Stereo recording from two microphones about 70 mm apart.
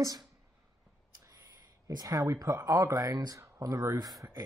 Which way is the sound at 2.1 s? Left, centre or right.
Right.